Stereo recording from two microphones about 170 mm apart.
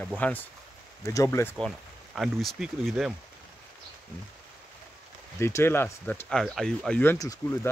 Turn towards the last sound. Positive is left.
turn(degrees=15)  # may be behind; listen again after turning